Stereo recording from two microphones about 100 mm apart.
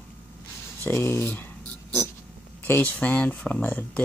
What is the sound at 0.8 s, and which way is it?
Speech, 25° left (ahead or behind).